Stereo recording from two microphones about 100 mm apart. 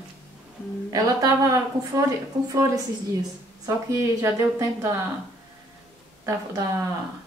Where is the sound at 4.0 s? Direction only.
30° right (ahead or behind).